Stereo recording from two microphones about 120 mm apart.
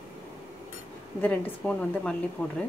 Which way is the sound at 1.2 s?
10° left (ahead or behind).